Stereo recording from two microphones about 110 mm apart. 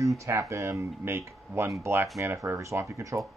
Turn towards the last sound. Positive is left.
turn(degrees=-30)  # may be behind; listen again after turning